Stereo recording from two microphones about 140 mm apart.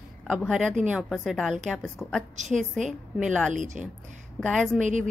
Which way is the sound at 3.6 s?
65° right (ahead or behind).